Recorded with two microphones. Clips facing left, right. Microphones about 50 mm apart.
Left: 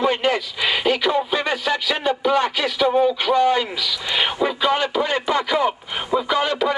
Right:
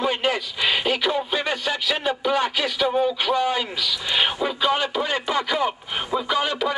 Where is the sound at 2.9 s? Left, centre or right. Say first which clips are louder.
Left 5 dB; centre.